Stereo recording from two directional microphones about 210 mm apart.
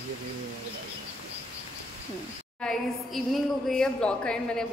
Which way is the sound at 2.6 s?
Centre (ahead or behind).